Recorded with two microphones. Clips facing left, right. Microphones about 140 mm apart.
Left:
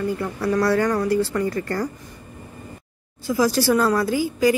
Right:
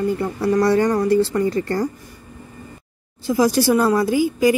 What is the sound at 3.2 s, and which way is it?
A woman's voice, 20° right (ahead or behind).